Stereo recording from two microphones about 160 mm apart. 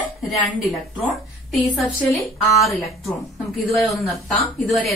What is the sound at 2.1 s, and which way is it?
Speech, 20° left (ahead or behind).